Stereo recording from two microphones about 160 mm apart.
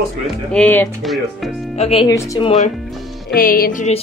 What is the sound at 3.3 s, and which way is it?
Speech, 65° left (ahead or behind).